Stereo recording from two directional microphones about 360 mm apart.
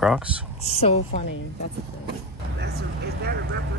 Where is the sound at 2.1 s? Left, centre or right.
Right.